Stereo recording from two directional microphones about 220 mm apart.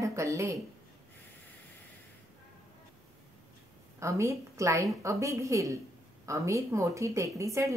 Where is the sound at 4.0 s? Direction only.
15° right (ahead or behind).